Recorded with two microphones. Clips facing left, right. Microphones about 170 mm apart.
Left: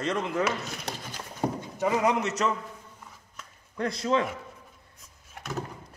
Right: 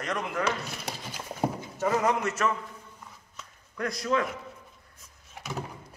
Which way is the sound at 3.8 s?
25° left (ahead or behind).